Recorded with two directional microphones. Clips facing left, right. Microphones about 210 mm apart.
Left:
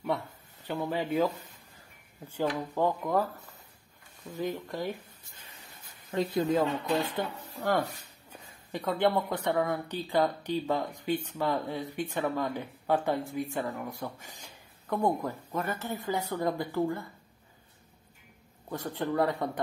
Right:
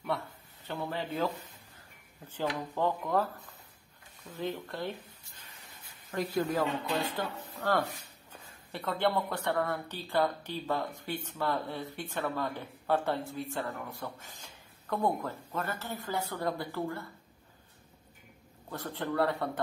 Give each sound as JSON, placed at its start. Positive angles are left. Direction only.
{"t": 0.7, "sound": "speech", "side_deg": 15}
{"t": 2.4, "sound": "speech", "side_deg": 15}
{"t": 6.1, "sound": "speech", "side_deg": 20}
{"t": 18.7, "sound": "speech", "side_deg": 15}